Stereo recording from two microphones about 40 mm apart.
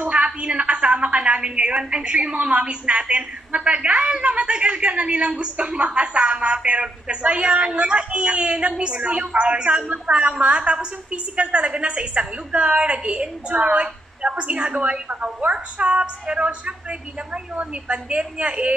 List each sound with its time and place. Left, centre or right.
0.1 s a woman's voice: right